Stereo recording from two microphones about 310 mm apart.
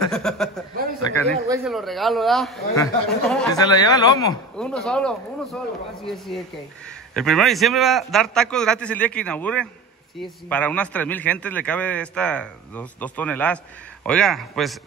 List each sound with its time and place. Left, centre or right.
0.0 s a sound: centre
2.7 s a man's voice: centre
3.6 s speech: centre
4.6 s a man's voice: centre